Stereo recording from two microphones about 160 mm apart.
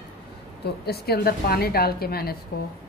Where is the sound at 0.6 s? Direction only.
90° left.